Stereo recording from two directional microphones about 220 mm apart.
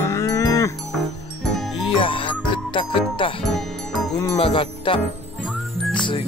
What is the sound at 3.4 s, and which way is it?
Music, centre (ahead or behind).